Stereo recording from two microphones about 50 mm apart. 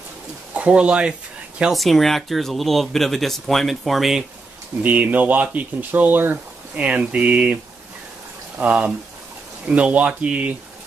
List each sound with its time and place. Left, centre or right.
0.6 s speech: right
1.7 s speech: centre
4.8 s speech: right
6.8 s speech: right
8.5 s speech: right